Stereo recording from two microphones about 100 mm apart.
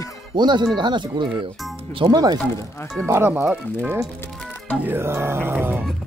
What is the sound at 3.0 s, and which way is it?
Speech, 25° right (ahead or behind).